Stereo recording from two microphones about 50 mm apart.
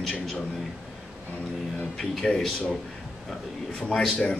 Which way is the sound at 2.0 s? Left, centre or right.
Centre.